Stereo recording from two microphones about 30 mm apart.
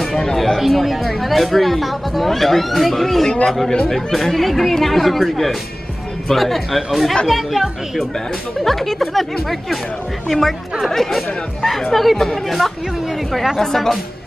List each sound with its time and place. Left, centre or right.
0.1 s speech: left
0.6 s a woman's voice: centre
8.5 s a woman's voice: centre
13.6 s a woman's voice: centre